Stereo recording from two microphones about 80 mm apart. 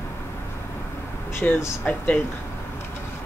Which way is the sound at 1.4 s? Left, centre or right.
Centre.